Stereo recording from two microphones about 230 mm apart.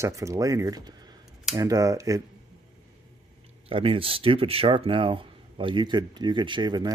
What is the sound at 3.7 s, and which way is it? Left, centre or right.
Speech, right.